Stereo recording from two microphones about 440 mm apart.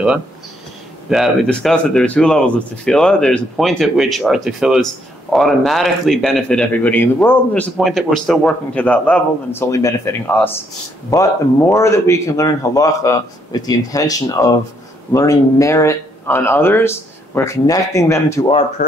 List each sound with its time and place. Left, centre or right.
1.0 s speech: centre
18.8 s speech: centre